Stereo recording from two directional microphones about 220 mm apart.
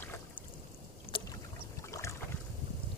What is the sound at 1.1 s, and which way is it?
Boat, 25° left (ahead or behind).